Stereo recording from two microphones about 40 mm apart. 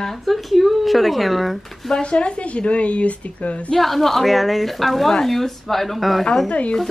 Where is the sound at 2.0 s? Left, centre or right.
Left.